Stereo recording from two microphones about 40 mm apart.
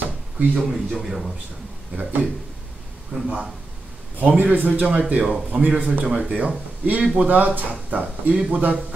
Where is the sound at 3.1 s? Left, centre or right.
Right.